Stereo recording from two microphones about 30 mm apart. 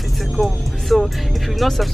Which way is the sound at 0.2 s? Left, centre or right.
Centre.